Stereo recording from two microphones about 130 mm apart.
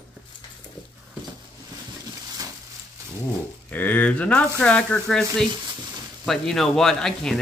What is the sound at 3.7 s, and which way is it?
Speech, 15° left (ahead or behind).